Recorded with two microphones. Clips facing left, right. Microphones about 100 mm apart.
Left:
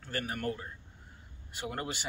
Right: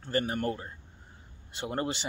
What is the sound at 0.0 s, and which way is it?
Speech, 25° right (ahead or behind).